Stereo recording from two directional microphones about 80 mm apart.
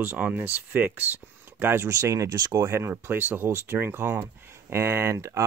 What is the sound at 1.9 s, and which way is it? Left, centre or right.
Speech, right.